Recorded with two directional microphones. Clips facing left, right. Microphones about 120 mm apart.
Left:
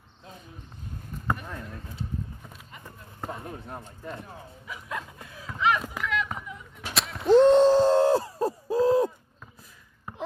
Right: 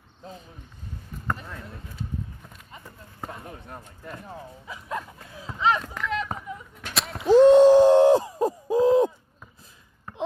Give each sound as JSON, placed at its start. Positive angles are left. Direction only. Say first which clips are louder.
{"t": 1.2, "sound": "basketball bounce", "louder": "left 1 dB", "side_deg": 10}
{"t": 3.2, "sound": "basketball bounce", "louder": "left 2 dB", "side_deg": 5}
{"t": 3.8, "sound": "speech", "louder": "left 2 dB", "side_deg": 25}
{"t": 4.3, "sound": "speech", "louder": "right 3 dB", "side_deg": -30}
{"t": 5.3, "sound": "run", "louder": "right 1 dB", "side_deg": -25}
{"t": 6.0, "sound": "a sound", "louder": "right 3 dB", "side_deg": -35}
{"t": 6.8, "sound": "a sound", "louder": "left 1 dB", "side_deg": 0}
{"t": 7.2, "sound": "hoot", "louder": "right 3 dB", "side_deg": 0}
{"t": 10.1, "sound": "a sound", "louder": "right 1 dB", "side_deg": 15}